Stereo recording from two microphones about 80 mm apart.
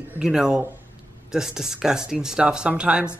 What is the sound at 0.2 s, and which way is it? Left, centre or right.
Speech, centre.